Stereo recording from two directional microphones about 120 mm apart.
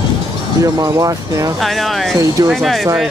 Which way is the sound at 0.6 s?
30° right (ahead or behind).